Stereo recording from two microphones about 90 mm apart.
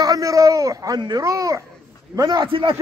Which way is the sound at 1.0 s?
55° right (ahead or behind).